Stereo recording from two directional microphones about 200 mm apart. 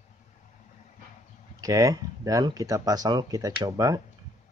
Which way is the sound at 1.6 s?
15° right (ahead or behind).